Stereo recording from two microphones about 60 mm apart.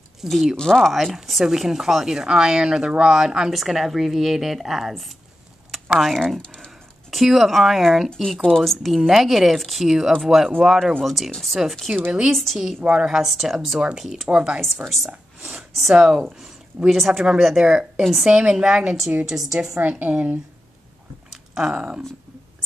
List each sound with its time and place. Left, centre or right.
0.2 s speech: centre
0.6 s speech: centre
6.1 s speech: centre
7.1 s speech: centre
8.1 s a woman's voice: centre
15.5 s a woman's voice: centre; by 20.3 s right
21.3 s a sound: centre